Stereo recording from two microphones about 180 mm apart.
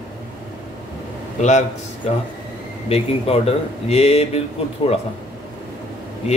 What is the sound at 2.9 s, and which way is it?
Speech, 35° left (ahead or behind).